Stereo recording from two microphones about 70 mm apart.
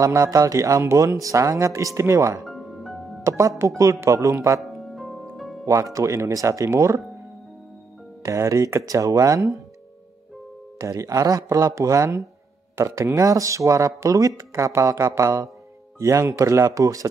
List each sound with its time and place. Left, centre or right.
0.0 s speech: right
2.4 s music: centre
3.3 s speech: right
4.6 s music: centre
5.7 s speech: right
8.2 s speech: right
10.8 s speech: right